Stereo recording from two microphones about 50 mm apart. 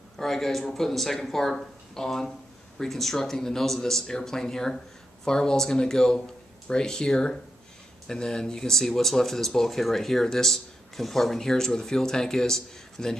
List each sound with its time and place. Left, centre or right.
0.2 s speech: centre